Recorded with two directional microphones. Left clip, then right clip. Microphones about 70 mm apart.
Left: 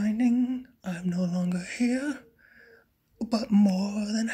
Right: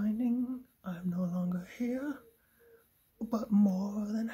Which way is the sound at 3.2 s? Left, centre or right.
Right.